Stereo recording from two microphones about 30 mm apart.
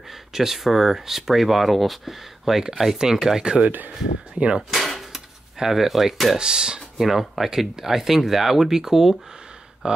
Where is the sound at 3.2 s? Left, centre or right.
Centre.